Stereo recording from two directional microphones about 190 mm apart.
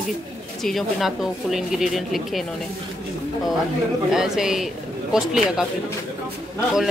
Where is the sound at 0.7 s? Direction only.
Centre (ahead or behind).